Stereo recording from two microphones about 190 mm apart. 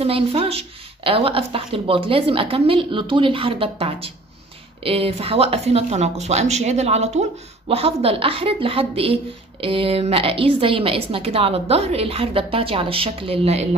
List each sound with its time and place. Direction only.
0.0 s a woman's voice: 30° right (ahead or behind)